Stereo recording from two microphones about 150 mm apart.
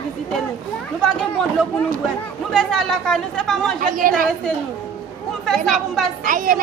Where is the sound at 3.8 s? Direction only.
65° right (ahead or behind).